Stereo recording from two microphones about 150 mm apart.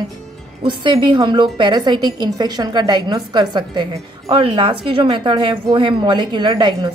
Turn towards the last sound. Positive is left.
turn(degrees=-30)  # may be behind; listen again after turning